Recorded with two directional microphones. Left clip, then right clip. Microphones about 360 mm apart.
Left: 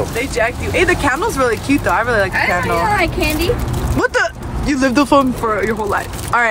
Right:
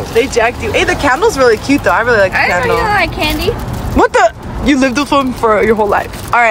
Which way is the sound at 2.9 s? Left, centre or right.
Right.